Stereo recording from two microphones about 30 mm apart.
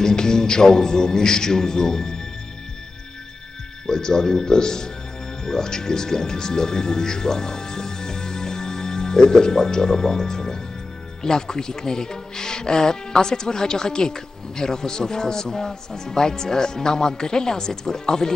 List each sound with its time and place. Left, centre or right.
0.0 s speech: left
3.8 s speech: left